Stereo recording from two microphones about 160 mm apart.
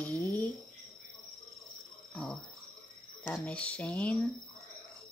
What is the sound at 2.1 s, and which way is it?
Speech, 5° left (ahead or behind).